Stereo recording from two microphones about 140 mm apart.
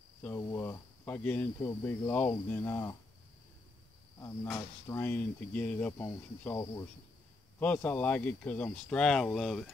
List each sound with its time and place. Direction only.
0.2 s speech: 20° left (ahead or behind)
4.2 s speech: 20° left (ahead or behind)
7.5 s speech: 10° left (ahead or behind)